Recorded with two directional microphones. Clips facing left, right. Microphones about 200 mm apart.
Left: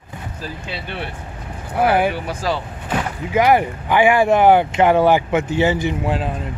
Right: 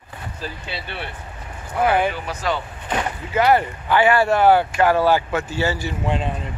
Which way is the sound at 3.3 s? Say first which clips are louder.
Left 2 dB; 15° left (ahead or behind).